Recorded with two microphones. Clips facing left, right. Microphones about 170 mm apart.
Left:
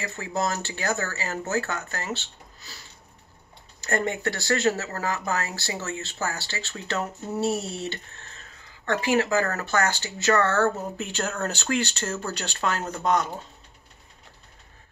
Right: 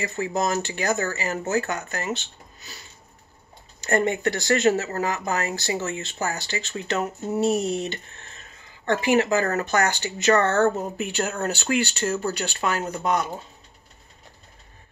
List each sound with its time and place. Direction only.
0.0 s speech: 15° right (ahead or behind)
3.8 s speech: 20° right (ahead or behind)